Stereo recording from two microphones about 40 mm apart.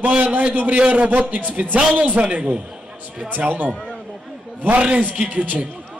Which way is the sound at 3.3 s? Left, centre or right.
Right.